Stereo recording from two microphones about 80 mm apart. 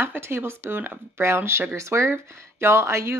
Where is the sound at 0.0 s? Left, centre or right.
Right.